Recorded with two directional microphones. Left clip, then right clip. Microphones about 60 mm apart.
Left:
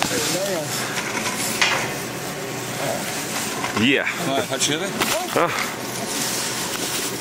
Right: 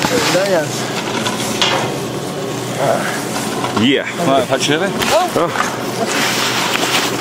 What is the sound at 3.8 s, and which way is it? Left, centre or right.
Speech, left.